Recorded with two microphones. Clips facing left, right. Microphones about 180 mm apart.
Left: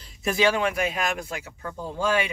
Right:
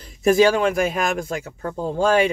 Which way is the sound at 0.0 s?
45° right (ahead or behind).